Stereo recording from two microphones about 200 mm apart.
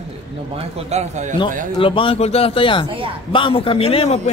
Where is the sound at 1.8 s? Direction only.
25° left (ahead or behind).